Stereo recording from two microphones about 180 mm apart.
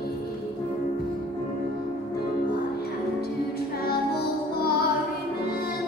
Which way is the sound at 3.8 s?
60° left (ahead or behind).